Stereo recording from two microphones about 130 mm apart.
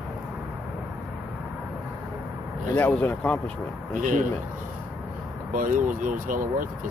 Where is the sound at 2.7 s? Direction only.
15° left (ahead or behind).